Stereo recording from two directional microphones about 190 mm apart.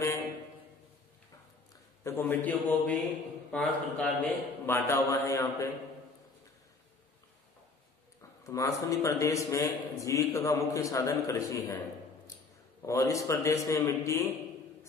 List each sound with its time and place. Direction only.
2.0 s a man's voice: 10° left (ahead or behind)
8.2 s a man's voice: 15° left (ahead or behind)
12.8 s a man's voice: 15° left (ahead or behind)